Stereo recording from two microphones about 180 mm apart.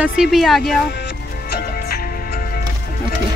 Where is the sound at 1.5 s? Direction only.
60° left (ahead or behind).